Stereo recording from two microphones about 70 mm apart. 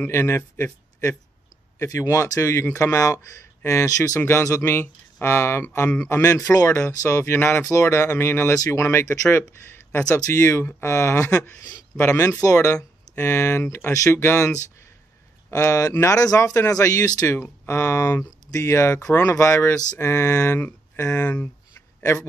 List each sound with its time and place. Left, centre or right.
0.0 s speech: left
1.9 s speech: left
8.5 s speech: left
9.7 s a sound: left
10.1 s speech: left
15.5 s speech: left
17.3 s speech: left